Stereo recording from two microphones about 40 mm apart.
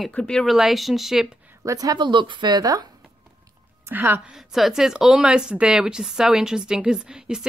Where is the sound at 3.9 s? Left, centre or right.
Right.